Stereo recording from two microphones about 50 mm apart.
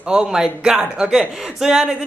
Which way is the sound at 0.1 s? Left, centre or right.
Centre.